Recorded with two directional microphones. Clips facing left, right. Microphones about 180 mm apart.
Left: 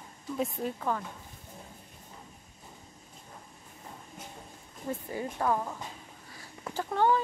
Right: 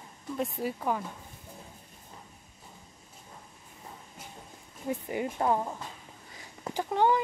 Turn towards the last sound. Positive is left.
turn(degrees=-15)  # may be behind; listen again after turning